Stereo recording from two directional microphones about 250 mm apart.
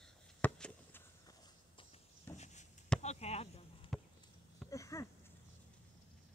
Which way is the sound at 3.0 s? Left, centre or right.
Left.